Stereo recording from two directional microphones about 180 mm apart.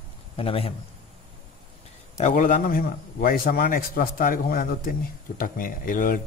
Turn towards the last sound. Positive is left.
turn(degrees=50)  # may be behind; listen again after turning